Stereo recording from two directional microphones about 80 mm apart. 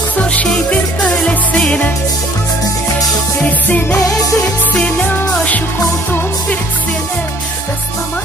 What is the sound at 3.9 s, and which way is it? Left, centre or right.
Music, centre.